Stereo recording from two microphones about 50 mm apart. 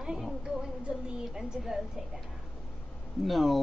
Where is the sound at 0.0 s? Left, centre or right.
Centre.